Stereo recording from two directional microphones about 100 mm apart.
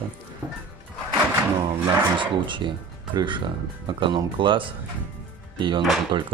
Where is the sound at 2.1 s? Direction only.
55° right (ahead or behind).